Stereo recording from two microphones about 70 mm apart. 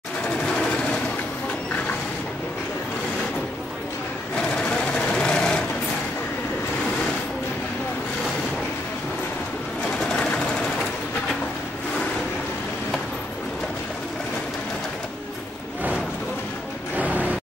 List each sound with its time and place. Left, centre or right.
4.6 s sewing machine: centre
16.9 s music: right